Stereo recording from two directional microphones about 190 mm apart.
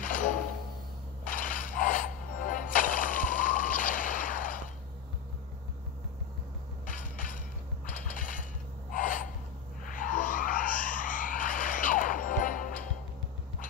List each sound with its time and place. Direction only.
0.0 s music: 45° left (ahead or behind)
1.2 s a sound: 45° left (ahead or behind)
2.5 s music: 45° left (ahead or behind)
6.9 s crushing: 45° left (ahead or behind)
7.8 s mechanisms: 45° left (ahead or behind)
8.9 s gasp: 45° left (ahead or behind)
9.8 s a sound: 45° left (ahead or behind)